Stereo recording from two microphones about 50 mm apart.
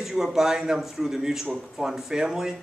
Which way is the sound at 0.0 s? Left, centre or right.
Centre.